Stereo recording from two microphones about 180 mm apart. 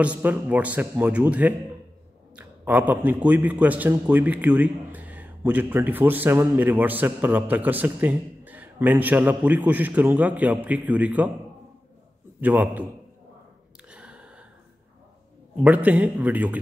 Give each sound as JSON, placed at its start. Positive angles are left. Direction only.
{"t": 0.0, "sound": "a man's voice", "side_deg": -10}
{"t": 12.4, "sound": "a man's voice", "side_deg": -10}
{"t": 13.8, "sound": "gasp", "side_deg": -5}
{"t": 15.6, "sound": "a man's voice", "side_deg": -10}